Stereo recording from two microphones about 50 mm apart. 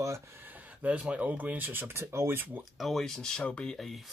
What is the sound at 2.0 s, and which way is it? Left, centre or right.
Speech, right.